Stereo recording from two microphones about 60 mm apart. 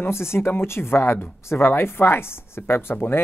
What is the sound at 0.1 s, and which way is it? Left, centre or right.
Speech, left.